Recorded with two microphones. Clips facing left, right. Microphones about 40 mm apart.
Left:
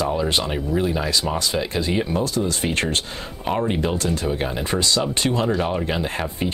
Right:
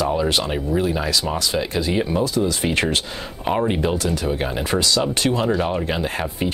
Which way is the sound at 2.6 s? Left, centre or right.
Centre.